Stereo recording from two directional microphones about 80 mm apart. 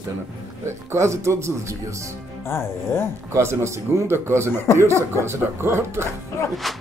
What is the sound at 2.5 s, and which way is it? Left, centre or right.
Speech, left.